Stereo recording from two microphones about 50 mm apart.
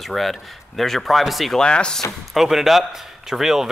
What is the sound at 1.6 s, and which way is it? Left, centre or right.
Speech, centre.